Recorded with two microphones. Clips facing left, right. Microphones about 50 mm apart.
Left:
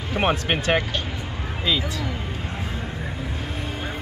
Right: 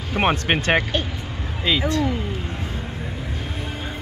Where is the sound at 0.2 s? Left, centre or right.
Right.